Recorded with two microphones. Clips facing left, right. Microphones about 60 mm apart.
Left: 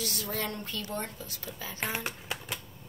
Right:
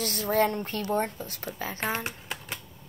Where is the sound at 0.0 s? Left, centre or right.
Right.